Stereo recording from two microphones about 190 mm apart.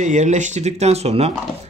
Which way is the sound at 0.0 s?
40° right (ahead or behind).